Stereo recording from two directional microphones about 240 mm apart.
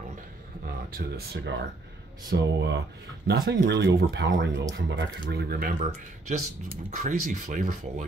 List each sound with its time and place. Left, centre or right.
0.7 s speech: right